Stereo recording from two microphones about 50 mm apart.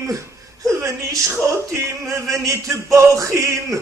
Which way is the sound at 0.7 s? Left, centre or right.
Right.